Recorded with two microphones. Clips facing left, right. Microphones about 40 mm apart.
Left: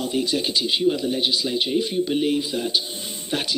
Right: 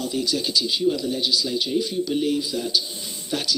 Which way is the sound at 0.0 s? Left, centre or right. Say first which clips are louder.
Left 2 dB; left.